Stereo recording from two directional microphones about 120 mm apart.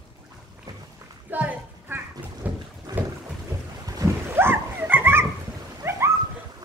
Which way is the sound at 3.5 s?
30° right (ahead or behind).